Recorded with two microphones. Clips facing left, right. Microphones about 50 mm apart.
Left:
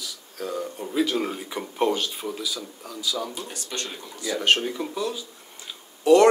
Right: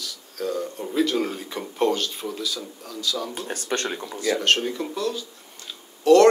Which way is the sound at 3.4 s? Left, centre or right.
Right.